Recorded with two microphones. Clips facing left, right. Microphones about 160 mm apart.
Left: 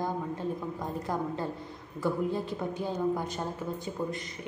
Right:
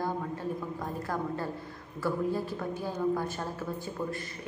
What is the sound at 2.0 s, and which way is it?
Speech, 20° left (ahead or behind).